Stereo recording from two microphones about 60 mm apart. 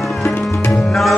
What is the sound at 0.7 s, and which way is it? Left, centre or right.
Tabla, centre.